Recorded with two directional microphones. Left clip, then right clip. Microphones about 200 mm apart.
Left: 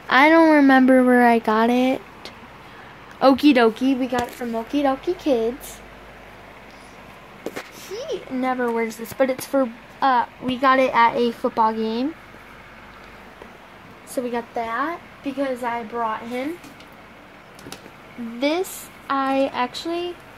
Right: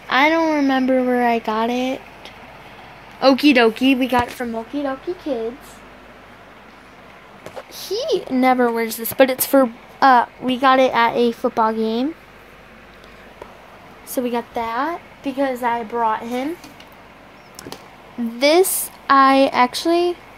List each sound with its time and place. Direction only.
0.1 s a child's voice: 15° left (ahead or behind)
0.4 s speech: 30° left (ahead or behind)
3.2 s speech: 10° left (ahead or behind)
3.8 s speech: 15° right (ahead or behind)
4.7 s speech: 20° left (ahead or behind)
7.8 s speech: 45° right (ahead or behind); by 12.1 s 20° right (ahead or behind)
14.3 s a woman's voice: 20° right (ahead or behind)
14.7 s speech: 35° right (ahead or behind)
18.4 s speech: 45° right (ahead or behind)